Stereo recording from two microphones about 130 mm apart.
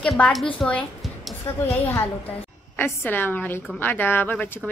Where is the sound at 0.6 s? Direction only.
5° left (ahead or behind).